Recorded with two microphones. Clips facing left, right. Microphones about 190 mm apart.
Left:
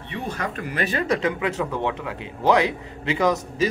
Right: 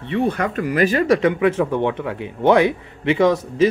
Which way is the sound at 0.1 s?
55° right (ahead or behind).